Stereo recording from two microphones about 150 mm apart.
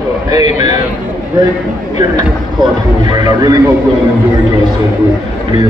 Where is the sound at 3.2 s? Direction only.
25° right (ahead or behind).